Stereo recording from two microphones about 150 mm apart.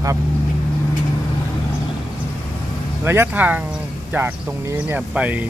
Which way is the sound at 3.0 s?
15° right (ahead or behind).